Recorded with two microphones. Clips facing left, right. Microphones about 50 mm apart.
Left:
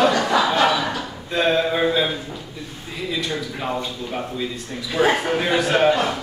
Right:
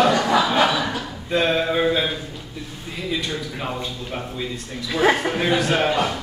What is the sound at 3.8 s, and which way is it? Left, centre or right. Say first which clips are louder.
A man's voice: left 2 dB; centre.